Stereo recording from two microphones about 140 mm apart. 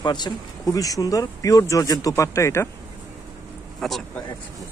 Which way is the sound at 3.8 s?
Centre (ahead or behind).